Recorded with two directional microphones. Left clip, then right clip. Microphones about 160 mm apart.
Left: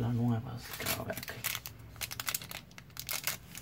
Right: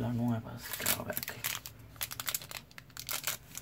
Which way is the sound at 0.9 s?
20° right (ahead or behind).